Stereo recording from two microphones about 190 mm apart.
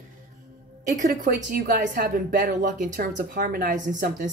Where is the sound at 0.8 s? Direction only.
40° right (ahead or behind).